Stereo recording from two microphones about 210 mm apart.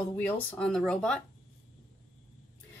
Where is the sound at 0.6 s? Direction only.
5° left (ahead or behind).